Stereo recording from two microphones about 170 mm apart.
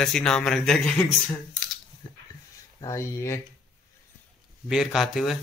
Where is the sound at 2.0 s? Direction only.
25° left (ahead or behind).